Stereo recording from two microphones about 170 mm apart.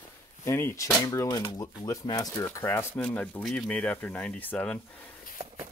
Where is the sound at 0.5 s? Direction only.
15° left (ahead or behind).